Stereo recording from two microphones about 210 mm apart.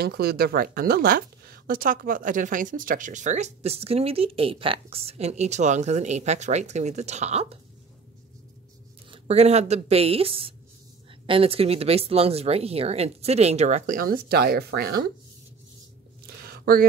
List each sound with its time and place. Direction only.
0.0 s speech: 50° right (ahead or behind); by 7.5 s 30° right (ahead or behind)
9.1 s speech: 30° right (ahead or behind); by 15.0 s 50° right (ahead or behind)
16.4 s a sound: 45° right (ahead or behind)